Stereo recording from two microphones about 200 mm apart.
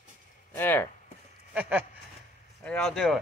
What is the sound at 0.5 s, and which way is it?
Speech, 10° left (ahead or behind).